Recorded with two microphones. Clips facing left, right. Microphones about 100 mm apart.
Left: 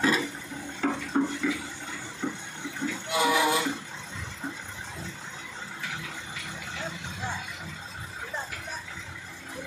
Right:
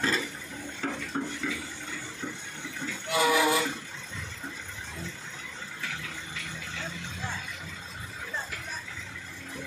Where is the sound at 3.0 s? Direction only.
20° left (ahead or behind).